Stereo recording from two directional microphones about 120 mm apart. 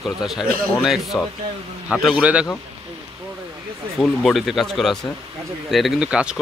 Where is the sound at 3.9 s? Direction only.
Centre (ahead or behind).